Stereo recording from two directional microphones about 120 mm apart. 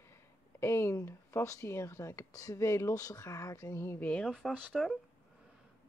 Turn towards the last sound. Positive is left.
turn(degrees=0)  # may be behind; listen again after turning